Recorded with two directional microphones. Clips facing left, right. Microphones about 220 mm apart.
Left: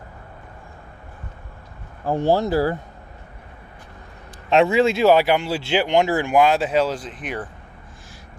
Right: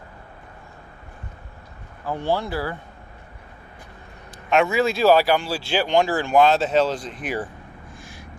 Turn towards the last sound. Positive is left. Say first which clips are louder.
# right 2 dB
turn(degrees=-5)  # may be behind; listen again after turning